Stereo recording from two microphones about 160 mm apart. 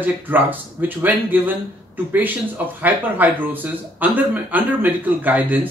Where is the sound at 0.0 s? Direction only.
10° right (ahead or behind).